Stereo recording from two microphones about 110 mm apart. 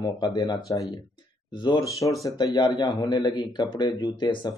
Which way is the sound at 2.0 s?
40° left (ahead or behind).